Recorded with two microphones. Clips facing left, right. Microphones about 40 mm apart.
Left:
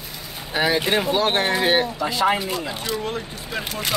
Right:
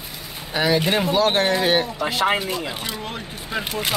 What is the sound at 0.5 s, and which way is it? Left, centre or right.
Speech, centre.